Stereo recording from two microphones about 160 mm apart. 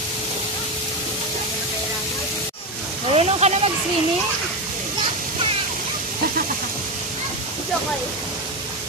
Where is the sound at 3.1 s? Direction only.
40° right (ahead or behind).